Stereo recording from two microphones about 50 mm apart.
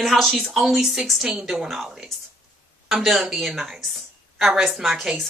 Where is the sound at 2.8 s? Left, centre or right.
Centre.